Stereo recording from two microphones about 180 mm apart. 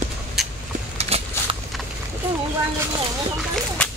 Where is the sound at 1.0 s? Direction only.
35° right (ahead or behind).